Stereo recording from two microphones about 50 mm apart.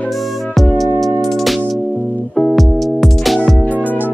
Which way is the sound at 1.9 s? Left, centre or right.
Left.